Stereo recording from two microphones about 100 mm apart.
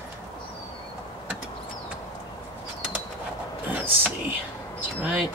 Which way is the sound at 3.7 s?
15° right (ahead or behind).